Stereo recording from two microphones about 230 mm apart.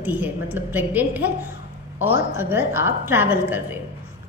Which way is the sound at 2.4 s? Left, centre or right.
Centre.